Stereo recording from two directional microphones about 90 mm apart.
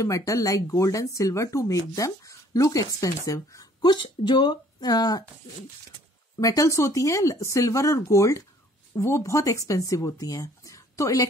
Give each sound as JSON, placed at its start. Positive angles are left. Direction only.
{"t": 0.0, "sound": "speech", "side_deg": 35}
{"t": 3.8, "sound": "speech", "side_deg": 60}
{"t": 6.4, "sound": "speech", "side_deg": 40}